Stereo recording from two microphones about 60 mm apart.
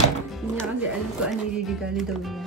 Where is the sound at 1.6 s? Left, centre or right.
Centre.